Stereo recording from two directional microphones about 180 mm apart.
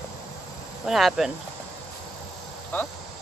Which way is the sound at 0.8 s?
Centre (ahead or behind).